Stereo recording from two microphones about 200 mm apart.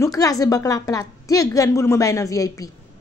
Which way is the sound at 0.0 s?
15° left (ahead or behind).